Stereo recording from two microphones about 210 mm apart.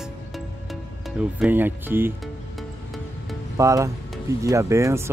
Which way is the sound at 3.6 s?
15° right (ahead or behind).